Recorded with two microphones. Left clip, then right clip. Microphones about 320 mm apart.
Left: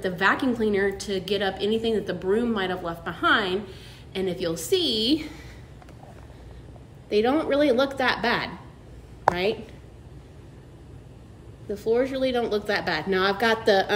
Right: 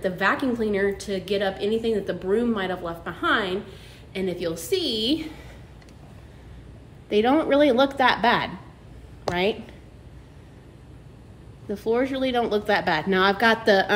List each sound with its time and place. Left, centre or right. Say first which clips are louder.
0.0 s a woman's voice: even; centre
7.1 s a woman's voice: right 2 dB; centre
11.7 s a woman's voice: even; centre